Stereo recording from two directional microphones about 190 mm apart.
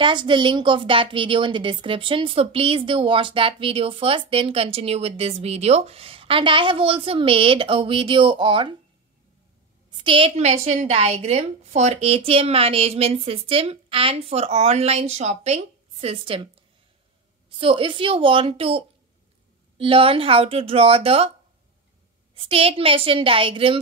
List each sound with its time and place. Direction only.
0.0 s a woman's voice: 25° right (ahead or behind)
9.8 s a woman's voice: 25° right (ahead or behind)
17.5 s a woman's voice: 30° right (ahead or behind)
22.3 s a woman's voice: 30° right (ahead or behind)